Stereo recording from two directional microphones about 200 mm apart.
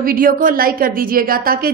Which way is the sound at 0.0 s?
45° right (ahead or behind).